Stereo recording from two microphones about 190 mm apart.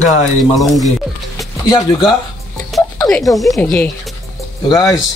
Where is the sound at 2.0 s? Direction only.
Centre (ahead or behind).